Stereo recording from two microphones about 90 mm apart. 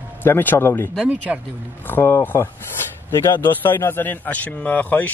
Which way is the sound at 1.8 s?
25° left (ahead or behind).